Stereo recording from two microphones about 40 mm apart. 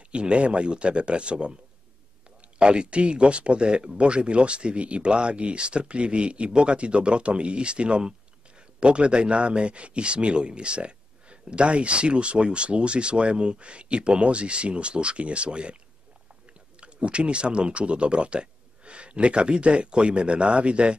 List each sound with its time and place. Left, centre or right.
0.1 s speech: right
2.6 s speech: right
16.8 s speech: right